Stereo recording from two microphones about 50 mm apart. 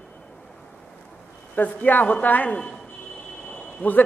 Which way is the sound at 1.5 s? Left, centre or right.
Left.